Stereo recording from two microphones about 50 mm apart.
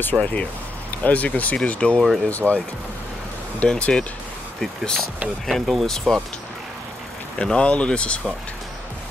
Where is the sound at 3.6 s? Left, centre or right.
Centre.